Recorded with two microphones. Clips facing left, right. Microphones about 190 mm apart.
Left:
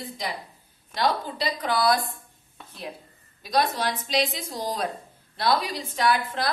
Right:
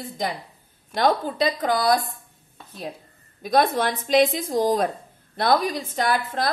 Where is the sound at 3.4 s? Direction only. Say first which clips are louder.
Right 4 dB; 50° right (ahead or behind).